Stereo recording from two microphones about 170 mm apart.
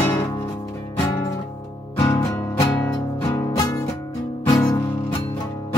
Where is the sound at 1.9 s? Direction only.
25° left (ahead or behind).